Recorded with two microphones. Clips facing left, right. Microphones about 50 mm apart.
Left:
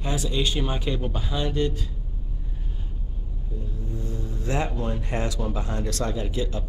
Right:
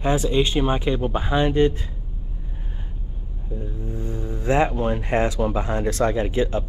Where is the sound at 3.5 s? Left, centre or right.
Right.